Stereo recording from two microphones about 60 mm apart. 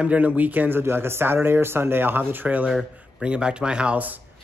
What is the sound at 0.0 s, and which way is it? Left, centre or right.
Speech, right.